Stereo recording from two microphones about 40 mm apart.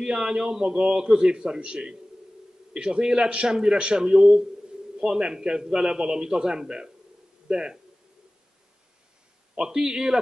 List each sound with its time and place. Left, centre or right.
0.0 s a man's voice: right
9.6 s a man's voice: centre